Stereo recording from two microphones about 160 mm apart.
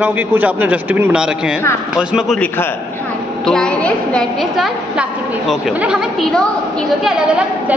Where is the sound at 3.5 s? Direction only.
5° left (ahead or behind).